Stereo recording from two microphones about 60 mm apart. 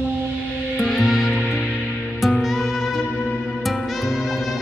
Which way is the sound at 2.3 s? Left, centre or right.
Centre.